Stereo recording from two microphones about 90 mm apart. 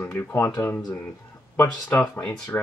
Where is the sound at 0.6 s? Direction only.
30° left (ahead or behind).